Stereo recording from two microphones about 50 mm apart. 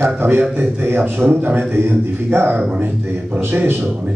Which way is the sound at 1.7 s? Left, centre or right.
Right.